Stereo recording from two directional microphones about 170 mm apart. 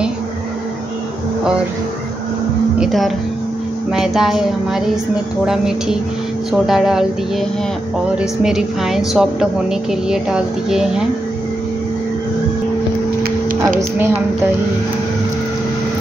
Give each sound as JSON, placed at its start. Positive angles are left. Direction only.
{"t": 2.8, "sound": "a woman's voice", "side_deg": 0}
{"t": 13.7, "sound": "a woman's voice", "side_deg": -15}